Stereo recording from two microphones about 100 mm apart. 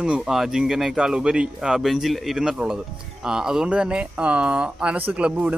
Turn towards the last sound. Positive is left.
turn(degrees=-15)  # may be behind; listen again after turning